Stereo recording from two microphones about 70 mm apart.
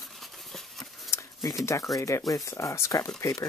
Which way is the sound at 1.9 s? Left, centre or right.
Left.